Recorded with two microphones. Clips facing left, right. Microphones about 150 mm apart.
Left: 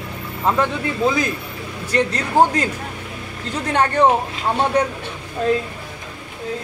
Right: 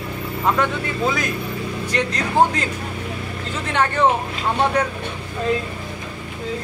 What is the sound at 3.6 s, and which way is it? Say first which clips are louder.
Speech: left 3 dB; 40° left (ahead or behind).